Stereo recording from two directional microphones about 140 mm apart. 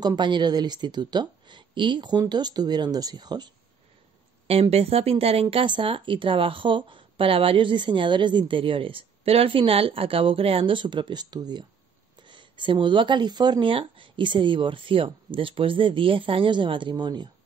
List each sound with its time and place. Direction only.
0.0 s speech: 30° right (ahead or behind)
4.5 s speech: 45° right (ahead or behind)